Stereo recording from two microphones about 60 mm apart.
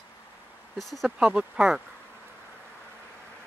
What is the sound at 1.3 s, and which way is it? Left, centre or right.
Speech, centre.